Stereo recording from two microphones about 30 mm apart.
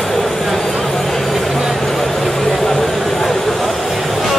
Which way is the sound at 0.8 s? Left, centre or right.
Centre.